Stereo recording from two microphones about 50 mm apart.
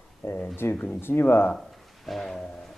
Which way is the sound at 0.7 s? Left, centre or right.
Left.